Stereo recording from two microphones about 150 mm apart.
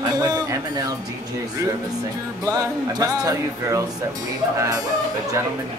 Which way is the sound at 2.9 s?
25° right (ahead or behind).